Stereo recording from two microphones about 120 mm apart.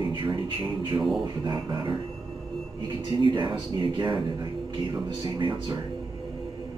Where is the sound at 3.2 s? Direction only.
45° right (ahead or behind).